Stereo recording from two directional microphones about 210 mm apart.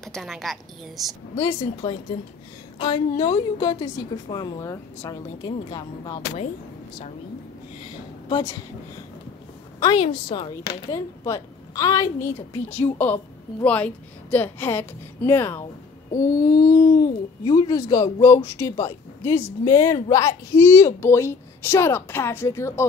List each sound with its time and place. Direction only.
0.0 s speech: centre (ahead or behind)
1.4 s a woman's voice: 20° left (ahead or behind)
8.3 s a child's voice: 20° left (ahead or behind)
9.8 s a sound: 20° left (ahead or behind)
10.0 s a woman's voice: 25° left (ahead or behind)